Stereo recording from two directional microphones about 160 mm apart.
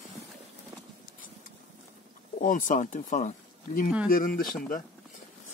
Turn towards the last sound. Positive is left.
turn(degrees=60)  # may be behind; listen again after turning